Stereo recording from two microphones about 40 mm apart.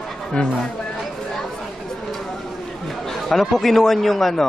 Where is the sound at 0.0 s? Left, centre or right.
Centre.